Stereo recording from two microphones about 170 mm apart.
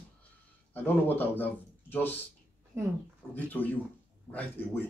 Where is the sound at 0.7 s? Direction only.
10° left (ahead or behind).